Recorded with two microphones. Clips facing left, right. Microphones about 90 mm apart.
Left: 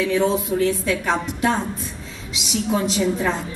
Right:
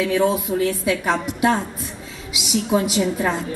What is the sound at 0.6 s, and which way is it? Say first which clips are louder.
Speech: even; 10° right (ahead or behind).